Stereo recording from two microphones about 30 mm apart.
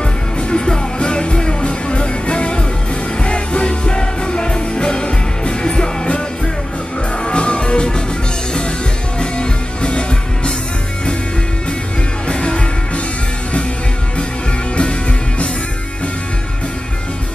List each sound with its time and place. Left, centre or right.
0.4 s music: left
7.2 s music: left
9.2 s music: left
12.3 s music: left
14.8 s music: left